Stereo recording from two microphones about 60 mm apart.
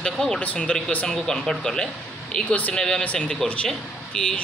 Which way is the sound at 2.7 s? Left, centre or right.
Centre.